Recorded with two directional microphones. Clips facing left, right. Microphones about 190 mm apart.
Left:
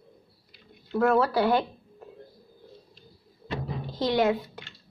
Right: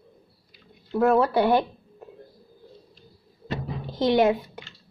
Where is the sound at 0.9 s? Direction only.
20° right (ahead or behind).